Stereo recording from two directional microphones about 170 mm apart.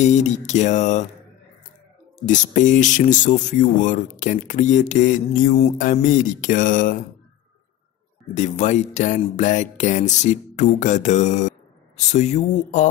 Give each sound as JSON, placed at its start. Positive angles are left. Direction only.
{"t": 0.0, "sound": "speech", "side_deg": 45}
{"t": 2.1, "sound": "speech", "side_deg": 45}
{"t": 8.4, "sound": "speech", "side_deg": 45}